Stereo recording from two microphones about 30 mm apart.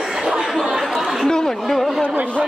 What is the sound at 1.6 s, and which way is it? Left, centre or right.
Speech, centre.